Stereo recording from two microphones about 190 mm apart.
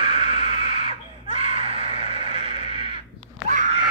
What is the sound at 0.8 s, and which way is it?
Screaming, 30° right (ahead or behind).